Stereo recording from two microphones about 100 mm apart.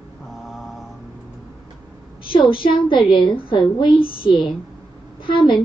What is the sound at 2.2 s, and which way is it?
A woman's voice, 60° left (ahead or behind).